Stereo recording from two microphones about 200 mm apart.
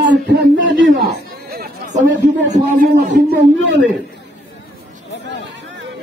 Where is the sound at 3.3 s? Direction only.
70° right (ahead or behind).